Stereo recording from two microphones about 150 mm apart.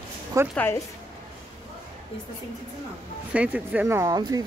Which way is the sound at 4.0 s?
25° right (ahead or behind).